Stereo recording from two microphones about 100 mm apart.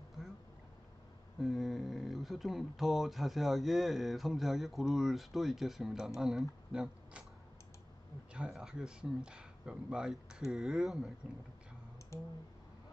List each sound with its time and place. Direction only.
1.4 s speech: centre (ahead or behind)
8.3 s speech: 10° right (ahead or behind)
12.1 s clicking: 30° left (ahead or behind)